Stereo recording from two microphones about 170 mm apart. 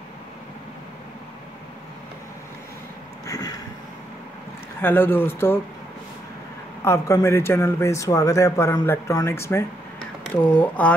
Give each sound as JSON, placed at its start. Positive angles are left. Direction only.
{"t": 3.3, "sound": "a sound", "side_deg": 20}
{"t": 4.8, "sound": "speech", "side_deg": 10}
{"t": 6.8, "sound": "speech", "side_deg": 15}